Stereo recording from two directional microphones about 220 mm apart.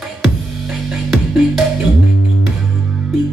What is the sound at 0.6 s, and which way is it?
Music, centre (ahead or behind).